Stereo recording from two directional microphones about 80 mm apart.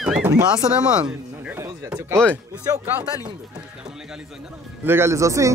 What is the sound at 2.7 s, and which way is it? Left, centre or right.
Speech, right.